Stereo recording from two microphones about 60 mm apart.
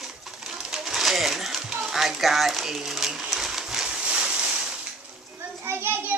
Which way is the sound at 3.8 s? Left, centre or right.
Centre.